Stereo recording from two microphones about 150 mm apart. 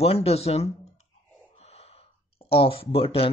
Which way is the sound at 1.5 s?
45° left (ahead or behind).